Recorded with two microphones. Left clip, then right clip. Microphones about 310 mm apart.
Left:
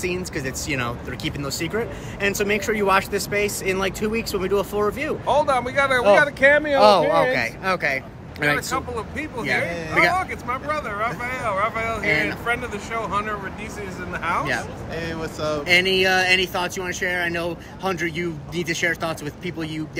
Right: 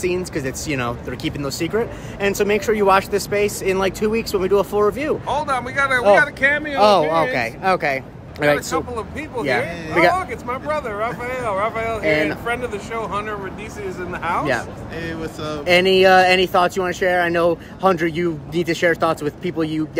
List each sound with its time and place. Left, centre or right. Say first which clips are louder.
0.0 s speech: right 4 dB; centre
5.2 s speech: left 2 dB; centre
6.8 s speech: right 3 dB; centre
15.0 s speech: even; centre
15.6 s speech: right 5 dB; right